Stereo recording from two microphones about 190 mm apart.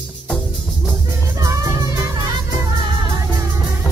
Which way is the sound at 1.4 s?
15° right (ahead or behind).